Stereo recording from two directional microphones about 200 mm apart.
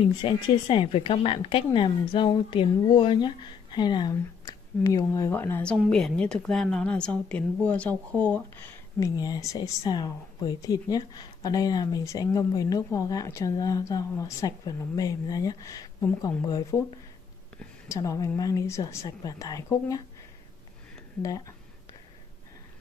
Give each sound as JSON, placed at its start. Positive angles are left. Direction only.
{"t": 0.0, "sound": "speech", "side_deg": 25}
{"t": 21.2, "sound": "speech", "side_deg": 15}